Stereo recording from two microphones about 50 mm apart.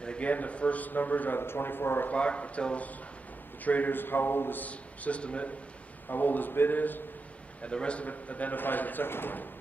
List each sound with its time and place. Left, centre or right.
0.0 s a man's voice: left
1.4 s a man's voice: left
2.0 s a man's voice: left
4.6 s speech: left
6.0 s a man's voice: left
7.6 s a man's voice: left